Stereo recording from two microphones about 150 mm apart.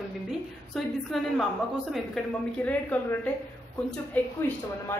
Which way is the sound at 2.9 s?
10° left (ahead or behind).